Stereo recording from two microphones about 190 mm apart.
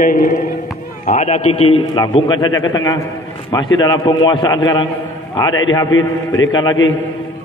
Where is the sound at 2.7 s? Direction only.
20° left (ahead or behind).